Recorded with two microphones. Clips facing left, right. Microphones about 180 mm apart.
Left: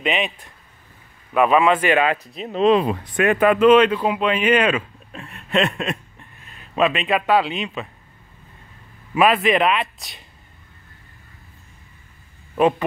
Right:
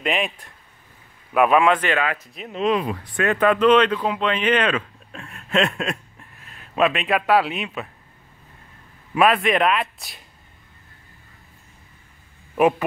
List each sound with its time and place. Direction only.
0.0 s speech: centre (ahead or behind)
1.9 s speech: 20° left (ahead or behind)
2.3 s speech: 30° left (ahead or behind); by 7.9 s centre (ahead or behind)
9.1 s speech: centre (ahead or behind)
12.5 s speech: 10° right (ahead or behind)